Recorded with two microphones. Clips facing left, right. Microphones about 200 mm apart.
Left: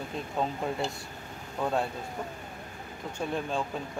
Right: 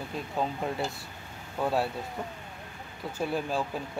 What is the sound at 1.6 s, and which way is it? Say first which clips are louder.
Speech: right 1 dB; 5° right (ahead or behind).